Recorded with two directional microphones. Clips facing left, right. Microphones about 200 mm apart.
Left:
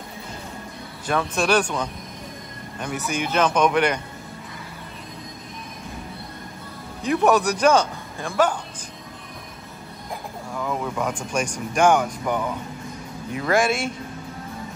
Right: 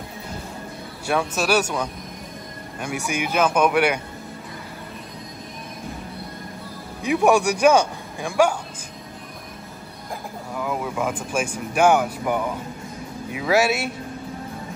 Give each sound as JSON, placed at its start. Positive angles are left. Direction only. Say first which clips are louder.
{"t": 1.0, "sound": "speech", "louder": "even", "side_deg": -5}
{"t": 7.0, "sound": "speech", "louder": "right 1 dB", "side_deg": -10}
{"t": 10.5, "sound": "speech", "louder": "even", "side_deg": -5}